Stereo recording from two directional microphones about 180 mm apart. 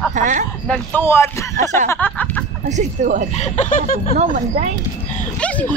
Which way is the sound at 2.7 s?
45° right (ahead or behind).